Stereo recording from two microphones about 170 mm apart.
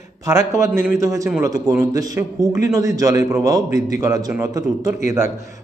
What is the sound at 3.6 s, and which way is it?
Speech, 45° left (ahead or behind).